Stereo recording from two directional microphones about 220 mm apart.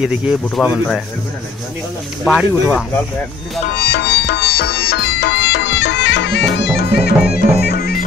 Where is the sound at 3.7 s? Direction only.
45° left (ahead or behind).